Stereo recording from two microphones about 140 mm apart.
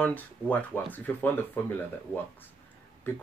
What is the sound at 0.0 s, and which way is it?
Speech, 10° left (ahead or behind).